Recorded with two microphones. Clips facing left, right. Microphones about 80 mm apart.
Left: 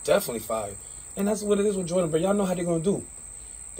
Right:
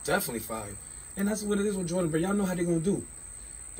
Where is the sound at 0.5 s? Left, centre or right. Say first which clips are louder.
Left 8 dB; left.